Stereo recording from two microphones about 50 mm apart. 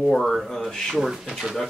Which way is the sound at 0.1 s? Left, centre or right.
Centre.